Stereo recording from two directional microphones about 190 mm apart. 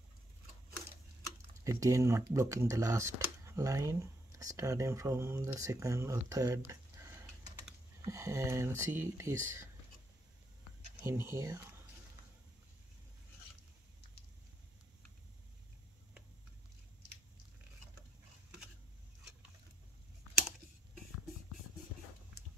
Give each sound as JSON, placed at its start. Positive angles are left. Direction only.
{"t": 1.6, "sound": "speech", "side_deg": -15}
{"t": 11.0, "sound": "speech", "side_deg": -10}